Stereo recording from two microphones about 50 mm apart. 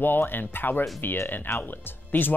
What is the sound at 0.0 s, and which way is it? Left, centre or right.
Speech, left.